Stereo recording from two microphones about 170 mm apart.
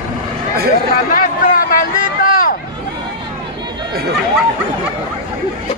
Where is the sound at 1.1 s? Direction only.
55° left (ahead or behind).